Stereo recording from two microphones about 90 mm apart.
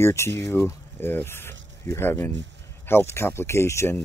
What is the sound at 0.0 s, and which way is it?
Speech, 30° left (ahead or behind).